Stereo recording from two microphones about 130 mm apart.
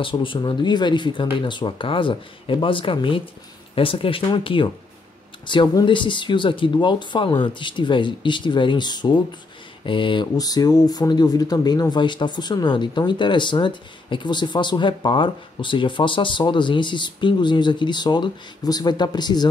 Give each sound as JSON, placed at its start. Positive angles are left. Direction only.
{"t": 0.0, "sound": "speech", "side_deg": 40}